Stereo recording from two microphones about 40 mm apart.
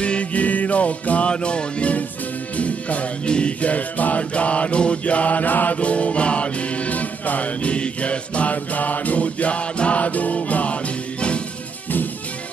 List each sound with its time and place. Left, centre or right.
0.0 s music: left
5.8 s music: left